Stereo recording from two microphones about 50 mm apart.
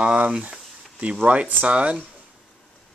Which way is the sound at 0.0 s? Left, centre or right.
Right.